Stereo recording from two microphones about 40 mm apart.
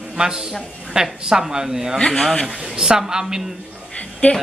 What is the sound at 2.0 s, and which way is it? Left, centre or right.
Speech, centre.